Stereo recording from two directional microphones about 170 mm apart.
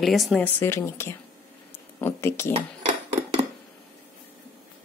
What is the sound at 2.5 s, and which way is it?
Dishes, 40° right (ahead or behind).